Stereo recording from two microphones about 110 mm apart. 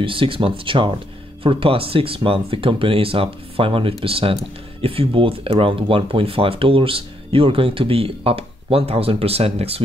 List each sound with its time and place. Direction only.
0.0 s speech: 50° right (ahead or behind)